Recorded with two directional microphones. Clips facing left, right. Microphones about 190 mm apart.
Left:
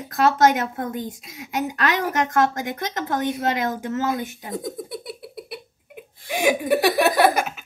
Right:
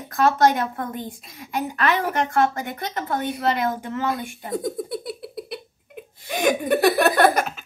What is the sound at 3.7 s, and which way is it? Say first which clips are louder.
Speech: left 1 dB; 40° left (ahead or behind).